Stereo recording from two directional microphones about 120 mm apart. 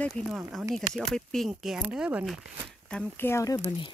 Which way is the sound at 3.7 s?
40° left (ahead or behind).